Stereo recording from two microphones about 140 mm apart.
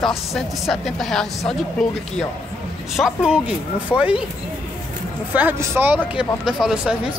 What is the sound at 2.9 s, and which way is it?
Speech, 5° right (ahead or behind).